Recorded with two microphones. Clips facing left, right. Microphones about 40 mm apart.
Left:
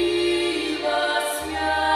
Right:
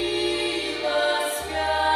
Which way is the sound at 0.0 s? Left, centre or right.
Centre.